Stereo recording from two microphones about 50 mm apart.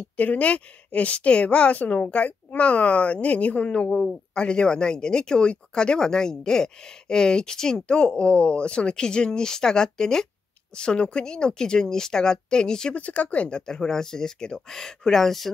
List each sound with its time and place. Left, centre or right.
0.2 s a woman's voice: left
12.9 s speech: left; by 15.5 s centre